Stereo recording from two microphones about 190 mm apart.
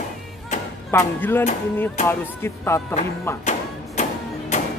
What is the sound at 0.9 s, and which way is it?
Music, 10° left (ahead or behind).